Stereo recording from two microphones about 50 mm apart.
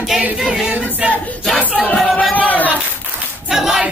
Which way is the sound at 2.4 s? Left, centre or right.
Left.